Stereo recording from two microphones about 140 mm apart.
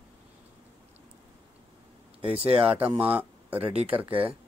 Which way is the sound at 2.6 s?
10° right (ahead or behind).